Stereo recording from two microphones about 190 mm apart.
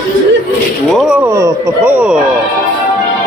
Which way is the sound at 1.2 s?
15° right (ahead or behind).